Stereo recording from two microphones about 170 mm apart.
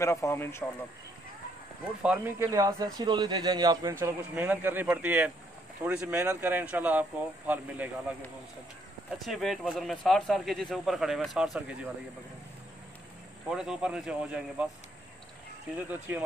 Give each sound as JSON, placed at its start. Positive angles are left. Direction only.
{"t": 0.0, "sound": "speech", "side_deg": 15}
{"t": 2.0, "sound": "speech", "side_deg": -15}
{"t": 4.0, "sound": "speech", "side_deg": -10}
{"t": 9.2, "sound": "speech", "side_deg": 0}
{"t": 13.5, "sound": "speech", "side_deg": -5}